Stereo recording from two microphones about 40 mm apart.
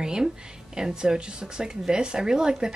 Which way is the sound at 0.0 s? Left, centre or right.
Centre.